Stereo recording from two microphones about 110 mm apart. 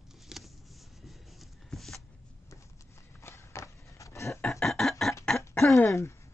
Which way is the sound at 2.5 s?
25° left (ahead or behind).